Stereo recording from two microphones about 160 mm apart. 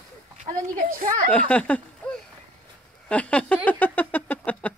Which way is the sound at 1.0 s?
55° right (ahead or behind).